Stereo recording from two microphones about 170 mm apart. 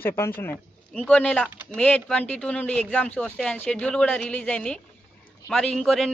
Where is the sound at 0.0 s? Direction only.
15° left (ahead or behind).